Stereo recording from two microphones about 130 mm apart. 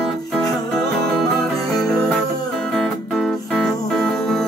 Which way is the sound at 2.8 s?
5° left (ahead or behind).